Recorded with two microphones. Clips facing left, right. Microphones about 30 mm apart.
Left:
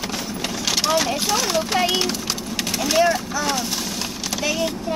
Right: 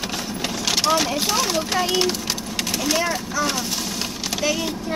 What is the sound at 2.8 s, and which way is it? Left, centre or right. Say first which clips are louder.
Speech: left 6 dB; centre.